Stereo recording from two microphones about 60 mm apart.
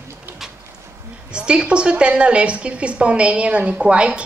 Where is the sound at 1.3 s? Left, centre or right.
Centre.